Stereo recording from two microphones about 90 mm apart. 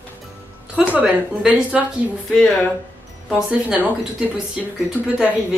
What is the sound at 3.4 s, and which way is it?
Speech, 15° right (ahead or behind).